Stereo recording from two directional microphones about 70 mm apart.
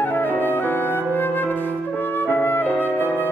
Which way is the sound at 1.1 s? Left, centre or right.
Left.